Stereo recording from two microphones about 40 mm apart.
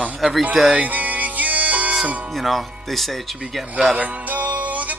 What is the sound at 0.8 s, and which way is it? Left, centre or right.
Music, right.